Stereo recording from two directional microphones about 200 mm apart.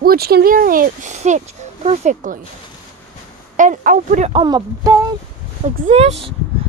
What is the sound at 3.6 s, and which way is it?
Speech, 40° right (ahead or behind).